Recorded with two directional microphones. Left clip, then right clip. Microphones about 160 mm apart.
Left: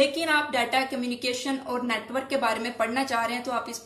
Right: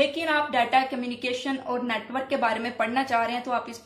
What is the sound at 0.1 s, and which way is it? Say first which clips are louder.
A woman's voice: even; 35° right (ahead or behind).